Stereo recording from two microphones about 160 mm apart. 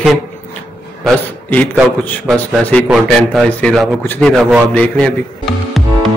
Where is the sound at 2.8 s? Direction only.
5° right (ahead or behind).